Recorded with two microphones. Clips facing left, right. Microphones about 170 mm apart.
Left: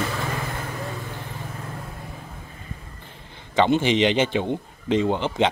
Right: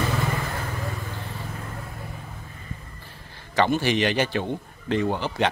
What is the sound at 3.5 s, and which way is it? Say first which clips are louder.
A man's voice: left 3 dB; 20° left (ahead or behind).